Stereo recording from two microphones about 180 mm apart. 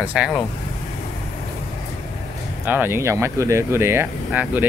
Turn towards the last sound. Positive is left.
turn(degrees=-10)  # may be behind; listen again after turning